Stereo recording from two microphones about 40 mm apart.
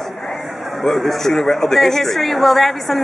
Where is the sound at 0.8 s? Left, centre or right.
Centre.